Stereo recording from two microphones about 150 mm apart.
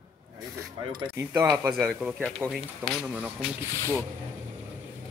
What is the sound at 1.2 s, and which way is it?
Speech, 15° right (ahead or behind).